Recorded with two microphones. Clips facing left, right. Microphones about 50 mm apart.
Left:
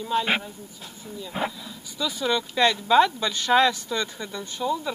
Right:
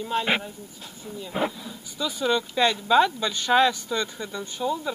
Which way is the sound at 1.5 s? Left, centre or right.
Right.